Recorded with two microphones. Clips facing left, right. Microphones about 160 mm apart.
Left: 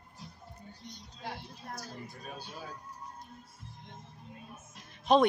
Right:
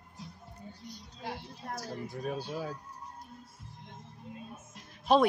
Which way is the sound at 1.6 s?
90° right.